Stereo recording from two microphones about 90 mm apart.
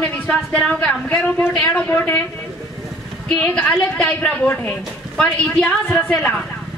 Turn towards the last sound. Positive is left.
turn(degrees=10)  # may be behind; listen again after turning